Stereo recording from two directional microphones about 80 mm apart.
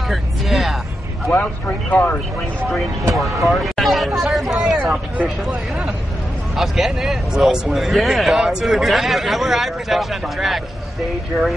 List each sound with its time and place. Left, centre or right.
0.1 s music: centre
1.3 s speech: centre
3.2 s a man's voice: centre